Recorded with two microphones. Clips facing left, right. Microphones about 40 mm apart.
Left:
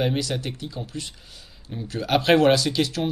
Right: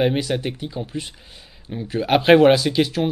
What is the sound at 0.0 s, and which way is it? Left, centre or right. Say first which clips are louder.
Speech: right 5 dB; right.